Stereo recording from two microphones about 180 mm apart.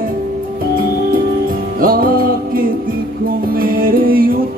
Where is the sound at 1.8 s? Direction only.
50° right (ahead or behind).